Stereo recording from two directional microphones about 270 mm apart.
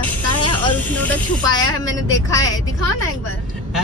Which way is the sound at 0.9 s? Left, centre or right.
Centre.